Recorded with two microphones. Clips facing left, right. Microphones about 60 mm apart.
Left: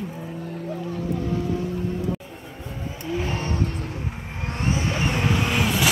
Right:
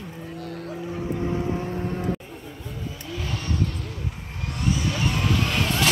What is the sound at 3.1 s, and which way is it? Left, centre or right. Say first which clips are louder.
Vehicle: left 4 dB; left.